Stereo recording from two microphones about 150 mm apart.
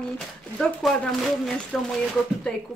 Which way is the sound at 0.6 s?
Centre (ahead or behind).